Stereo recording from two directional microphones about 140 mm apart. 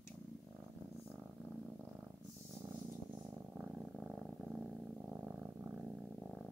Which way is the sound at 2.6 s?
20° right (ahead or behind).